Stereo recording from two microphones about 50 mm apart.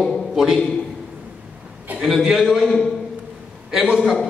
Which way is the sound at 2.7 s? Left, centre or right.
Centre.